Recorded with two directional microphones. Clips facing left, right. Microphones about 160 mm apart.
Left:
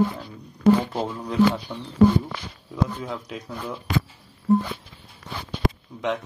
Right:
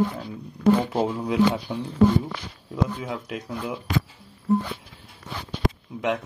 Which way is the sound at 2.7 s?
Centre (ahead or behind).